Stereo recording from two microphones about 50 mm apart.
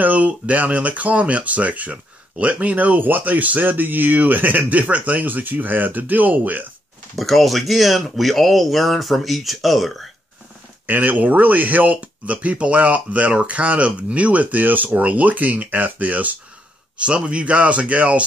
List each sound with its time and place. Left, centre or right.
0.0 s speech: right
7.2 s speech: centre
10.9 s speech: right